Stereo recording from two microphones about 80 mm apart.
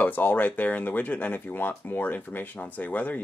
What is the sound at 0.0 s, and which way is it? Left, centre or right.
Speech, left.